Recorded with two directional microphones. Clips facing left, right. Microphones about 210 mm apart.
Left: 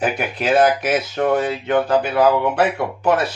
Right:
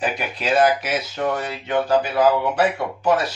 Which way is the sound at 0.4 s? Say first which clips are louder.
Left 2 dB; 55° left (ahead or behind).